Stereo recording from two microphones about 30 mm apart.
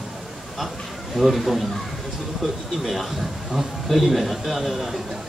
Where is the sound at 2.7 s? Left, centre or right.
Centre.